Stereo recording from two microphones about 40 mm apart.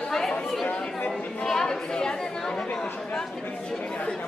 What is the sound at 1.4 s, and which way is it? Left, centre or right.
Speech, centre.